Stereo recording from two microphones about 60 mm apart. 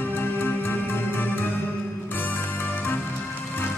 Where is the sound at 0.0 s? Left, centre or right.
Left.